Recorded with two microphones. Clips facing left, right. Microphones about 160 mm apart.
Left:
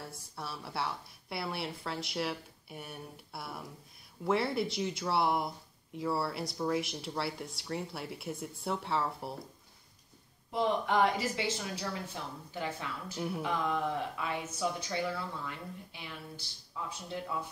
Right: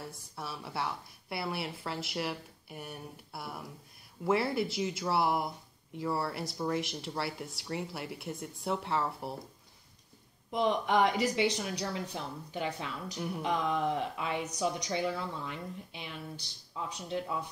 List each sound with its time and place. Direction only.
0.0 s a woman's voice: centre (ahead or behind)
10.5 s a woman's voice: 20° right (ahead or behind)